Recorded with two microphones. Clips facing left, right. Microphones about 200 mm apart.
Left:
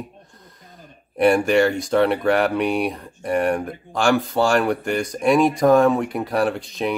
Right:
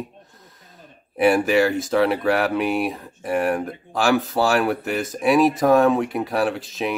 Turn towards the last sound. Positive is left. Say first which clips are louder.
# left 1 dB
turn(degrees=0)  # may be behind; listen again after turning